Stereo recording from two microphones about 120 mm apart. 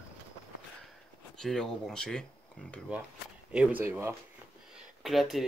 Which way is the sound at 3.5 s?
10° right (ahead or behind).